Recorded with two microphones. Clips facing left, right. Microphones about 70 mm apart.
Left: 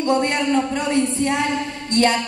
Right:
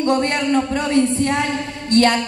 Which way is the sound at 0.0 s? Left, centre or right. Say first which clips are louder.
Right 1 dB; centre.